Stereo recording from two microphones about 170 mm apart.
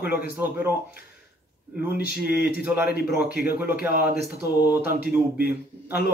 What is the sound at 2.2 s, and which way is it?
Speech, 70° left (ahead or behind).